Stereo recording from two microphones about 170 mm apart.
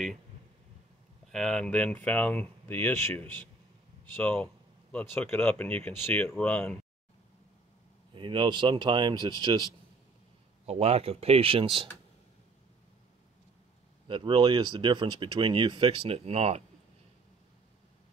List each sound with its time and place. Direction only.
1.2 s speech: 5° left (ahead or behind)
8.1 s speech: 30° right (ahead or behind)
10.6 s speech: 40° right (ahead or behind)
14.0 s speech: 30° right (ahead or behind)